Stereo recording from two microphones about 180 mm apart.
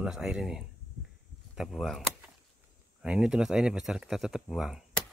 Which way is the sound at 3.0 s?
5° right (ahead or behind).